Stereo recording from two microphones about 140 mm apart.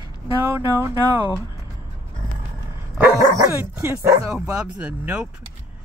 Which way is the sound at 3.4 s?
15° right (ahead or behind).